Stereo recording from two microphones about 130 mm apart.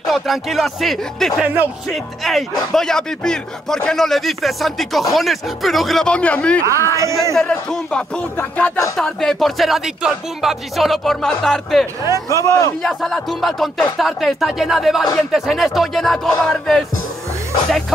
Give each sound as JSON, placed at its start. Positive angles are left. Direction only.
{"t": 0.0, "sound": "a man's voice", "side_deg": 0}
{"t": 6.6, "sound": "speech", "side_deg": -25}
{"t": 7.3, "sound": "a man's voice", "side_deg": 5}
{"t": 12.3, "sound": "speech", "side_deg": 25}
{"t": 12.8, "sound": "a man's voice", "side_deg": 5}